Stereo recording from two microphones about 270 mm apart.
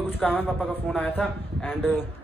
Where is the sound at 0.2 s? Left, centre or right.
Centre.